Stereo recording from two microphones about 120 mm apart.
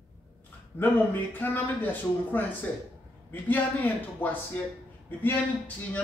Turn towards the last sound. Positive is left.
turn(degrees=15)  # may be behind; listen again after turning